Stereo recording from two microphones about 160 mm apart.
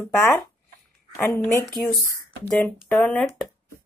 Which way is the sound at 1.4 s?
15° left (ahead or behind).